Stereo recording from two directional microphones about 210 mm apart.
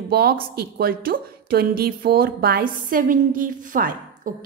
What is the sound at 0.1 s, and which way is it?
A woman's voice, 45° right (ahead or behind).